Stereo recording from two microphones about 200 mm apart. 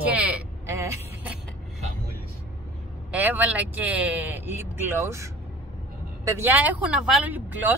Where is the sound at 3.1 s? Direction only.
10° right (ahead or behind).